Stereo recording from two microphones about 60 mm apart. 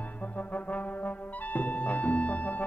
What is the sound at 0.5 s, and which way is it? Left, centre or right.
Brass instrument, left.